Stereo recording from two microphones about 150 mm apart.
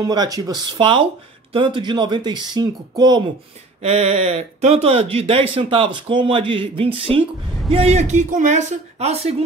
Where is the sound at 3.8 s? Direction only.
45° right (ahead or behind).